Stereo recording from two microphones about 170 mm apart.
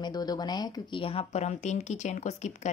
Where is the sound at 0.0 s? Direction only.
25° left (ahead or behind).